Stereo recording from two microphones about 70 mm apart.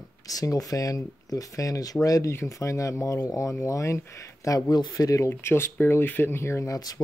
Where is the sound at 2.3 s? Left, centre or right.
Left.